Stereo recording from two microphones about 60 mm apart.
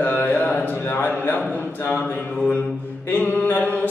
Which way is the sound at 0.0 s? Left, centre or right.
Left.